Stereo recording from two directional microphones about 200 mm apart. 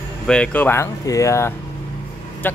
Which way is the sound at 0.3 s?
5° left (ahead or behind).